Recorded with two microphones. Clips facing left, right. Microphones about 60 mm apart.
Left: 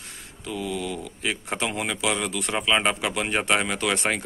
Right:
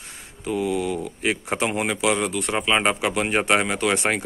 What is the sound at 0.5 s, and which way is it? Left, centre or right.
Speech, right.